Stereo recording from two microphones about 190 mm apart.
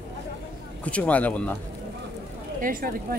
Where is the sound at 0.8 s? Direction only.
10° left (ahead or behind).